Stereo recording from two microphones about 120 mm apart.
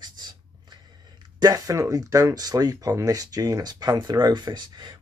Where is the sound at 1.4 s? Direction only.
30° right (ahead or behind).